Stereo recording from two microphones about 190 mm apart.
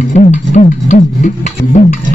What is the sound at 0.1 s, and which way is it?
Music, 40° left (ahead or behind).